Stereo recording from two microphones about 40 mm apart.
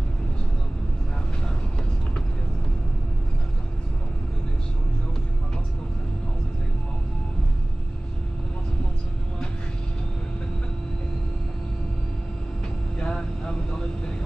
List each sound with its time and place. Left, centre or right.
13.0 s vehicle: left